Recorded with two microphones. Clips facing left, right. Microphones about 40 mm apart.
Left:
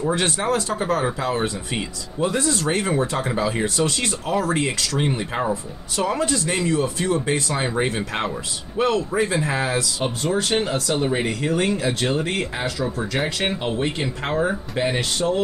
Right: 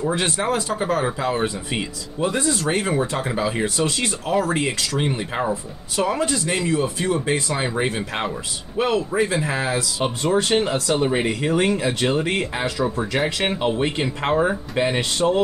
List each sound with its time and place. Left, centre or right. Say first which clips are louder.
0.1 s speech: even; centre
9.8 s speech: right 1 dB; right
13.4 s speech: right 2 dB; right
15.0 s speech: right 2 dB; right